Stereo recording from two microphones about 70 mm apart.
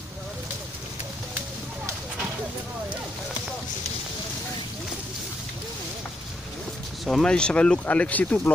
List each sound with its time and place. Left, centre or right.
7.1 s speech: centre